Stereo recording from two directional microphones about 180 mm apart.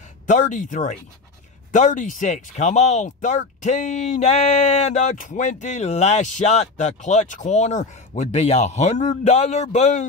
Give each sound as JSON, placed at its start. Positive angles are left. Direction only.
{"t": 0.3, "sound": "speech", "side_deg": 45}